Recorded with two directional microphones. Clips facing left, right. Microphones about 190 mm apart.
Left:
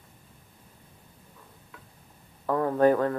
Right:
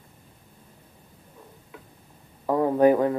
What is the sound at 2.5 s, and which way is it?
Speech, 15° right (ahead or behind).